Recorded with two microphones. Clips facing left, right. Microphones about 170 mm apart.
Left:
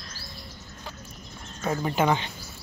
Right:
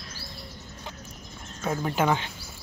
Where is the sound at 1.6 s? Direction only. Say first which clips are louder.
Left 1 dB; centre (ahead or behind).